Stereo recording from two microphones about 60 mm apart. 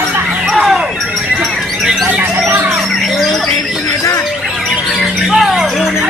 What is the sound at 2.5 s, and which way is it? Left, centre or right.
Music, right.